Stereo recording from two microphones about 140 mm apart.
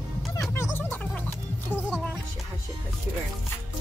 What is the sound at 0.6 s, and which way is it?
Music, 15° left (ahead or behind).